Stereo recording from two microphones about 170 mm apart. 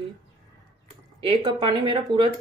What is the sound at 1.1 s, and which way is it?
Speech, 30° right (ahead or behind).